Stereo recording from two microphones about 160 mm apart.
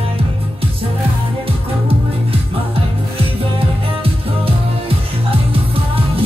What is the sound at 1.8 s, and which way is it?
Music, 35° right (ahead or behind).